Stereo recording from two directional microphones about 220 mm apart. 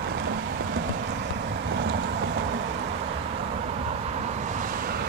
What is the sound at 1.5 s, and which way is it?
Vehicle, 55° right (ahead or behind).